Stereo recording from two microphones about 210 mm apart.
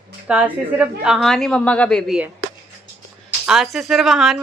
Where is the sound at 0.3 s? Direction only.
5° right (ahead or behind).